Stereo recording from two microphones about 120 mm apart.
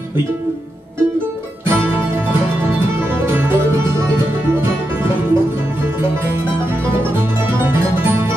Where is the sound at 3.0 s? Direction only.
20° right (ahead or behind).